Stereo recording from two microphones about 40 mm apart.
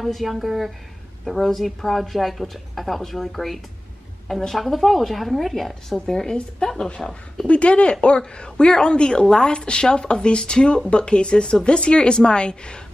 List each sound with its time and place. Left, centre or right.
0.0 s speech: centre
5.9 s speech: centre
6.6 s speech: left
7.0 s speech: centre
7.4 s speech: left